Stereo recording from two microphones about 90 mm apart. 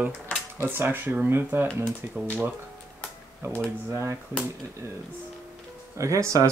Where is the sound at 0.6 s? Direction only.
25° right (ahead or behind).